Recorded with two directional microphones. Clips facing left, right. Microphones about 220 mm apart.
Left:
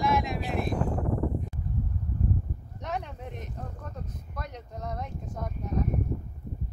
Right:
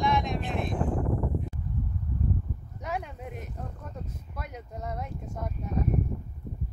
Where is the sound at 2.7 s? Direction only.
5° right (ahead or behind).